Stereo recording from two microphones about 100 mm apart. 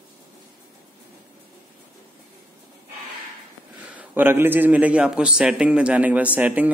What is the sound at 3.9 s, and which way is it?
A man's voice, 20° right (ahead or behind).